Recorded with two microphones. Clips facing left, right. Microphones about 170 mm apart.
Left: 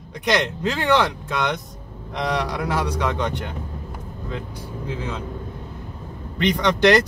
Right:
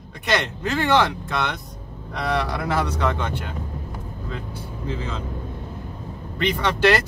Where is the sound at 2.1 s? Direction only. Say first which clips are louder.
Even; 15° left (ahead or behind).